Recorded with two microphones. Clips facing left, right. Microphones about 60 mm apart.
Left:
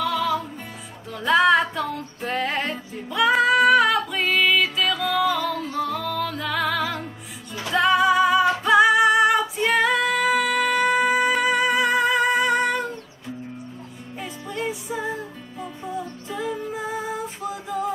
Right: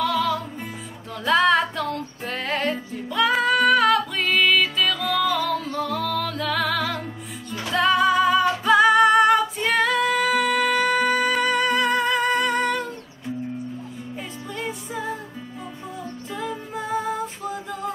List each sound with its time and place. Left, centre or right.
0.0 s music: centre
2.7 s female singing: centre
7.6 s music: centre
14.5 s music: centre
16.3 s music: centre